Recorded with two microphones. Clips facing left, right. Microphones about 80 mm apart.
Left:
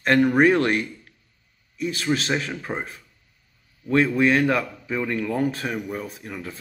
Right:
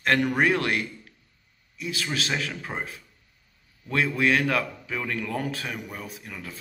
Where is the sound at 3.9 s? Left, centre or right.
Left.